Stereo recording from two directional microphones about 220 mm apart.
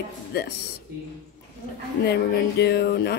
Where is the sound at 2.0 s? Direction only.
50° left (ahead or behind).